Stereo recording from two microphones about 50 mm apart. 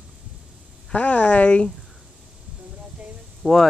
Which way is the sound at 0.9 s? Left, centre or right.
Left.